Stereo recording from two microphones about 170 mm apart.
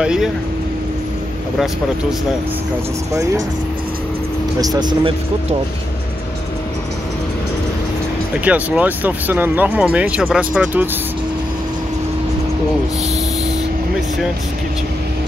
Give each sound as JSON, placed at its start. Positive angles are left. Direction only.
{"t": 0.0, "sound": "speech", "side_deg": -5}
{"t": 3.1, "sound": "speech", "side_deg": -20}
{"t": 4.6, "sound": "speech", "side_deg": -25}
{"t": 8.5, "sound": "speech", "side_deg": -10}